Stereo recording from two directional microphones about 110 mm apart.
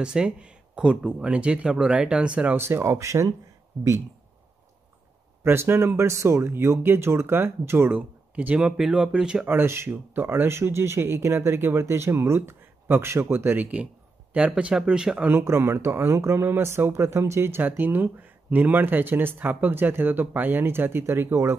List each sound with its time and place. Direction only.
0.0 s speech: 10° right (ahead or behind)
2.5 s speech: 20° right (ahead or behind)
5.4 s speech: 20° right (ahead or behind)
9.6 s speech: 20° right (ahead or behind)